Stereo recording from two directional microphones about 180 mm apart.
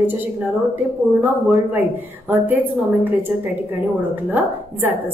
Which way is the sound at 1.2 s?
10° right (ahead or behind).